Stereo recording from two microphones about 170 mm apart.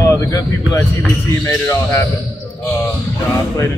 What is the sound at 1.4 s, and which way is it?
Speech, 15° left (ahead or behind).